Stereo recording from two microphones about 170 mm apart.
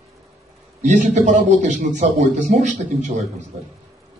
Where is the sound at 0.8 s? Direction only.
45° right (ahead or behind).